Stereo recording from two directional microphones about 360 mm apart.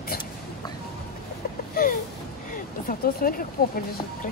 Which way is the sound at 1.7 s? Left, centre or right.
Left.